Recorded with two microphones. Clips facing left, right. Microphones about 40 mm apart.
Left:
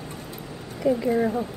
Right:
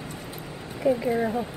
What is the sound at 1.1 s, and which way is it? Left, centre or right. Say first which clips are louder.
Speech: left 2 dB; centre.